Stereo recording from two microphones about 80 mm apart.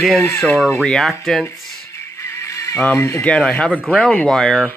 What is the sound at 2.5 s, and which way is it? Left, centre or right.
Music, left.